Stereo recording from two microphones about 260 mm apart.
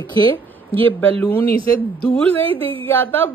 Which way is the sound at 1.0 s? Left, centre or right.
Centre.